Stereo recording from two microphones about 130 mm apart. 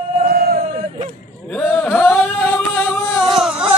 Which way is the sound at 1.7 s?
15° left (ahead or behind).